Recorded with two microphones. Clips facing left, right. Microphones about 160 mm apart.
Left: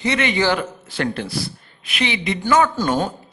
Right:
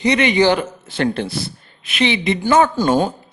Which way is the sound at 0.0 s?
20° right (ahead or behind).